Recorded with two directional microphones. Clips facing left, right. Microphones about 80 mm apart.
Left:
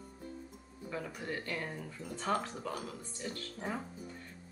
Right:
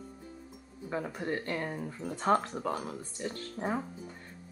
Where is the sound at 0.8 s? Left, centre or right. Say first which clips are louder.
Right 5 dB; right.